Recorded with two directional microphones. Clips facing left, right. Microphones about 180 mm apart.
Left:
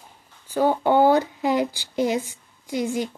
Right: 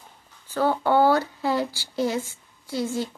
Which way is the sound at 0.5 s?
15° left (ahead or behind).